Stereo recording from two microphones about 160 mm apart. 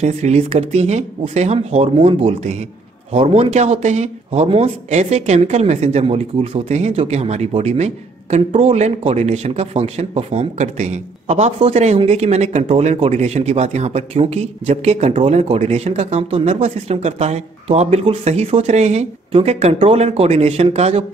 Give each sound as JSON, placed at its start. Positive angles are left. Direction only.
{"t": 0.0, "sound": "speech", "side_deg": -45}